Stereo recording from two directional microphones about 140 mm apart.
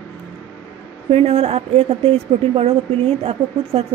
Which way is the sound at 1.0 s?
45° right (ahead or behind).